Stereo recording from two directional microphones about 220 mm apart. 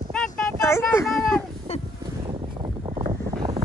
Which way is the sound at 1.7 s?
30° left (ahead or behind).